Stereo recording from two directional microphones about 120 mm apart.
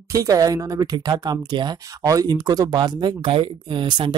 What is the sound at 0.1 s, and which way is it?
Speech, 30° right (ahead or behind).